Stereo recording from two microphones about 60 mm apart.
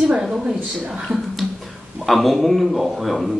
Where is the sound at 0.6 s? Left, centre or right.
Right.